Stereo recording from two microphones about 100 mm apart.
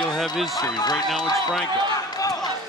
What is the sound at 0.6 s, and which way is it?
Speech, 40° left (ahead or behind).